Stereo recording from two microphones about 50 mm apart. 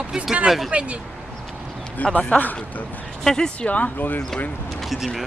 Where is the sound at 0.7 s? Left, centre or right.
Right.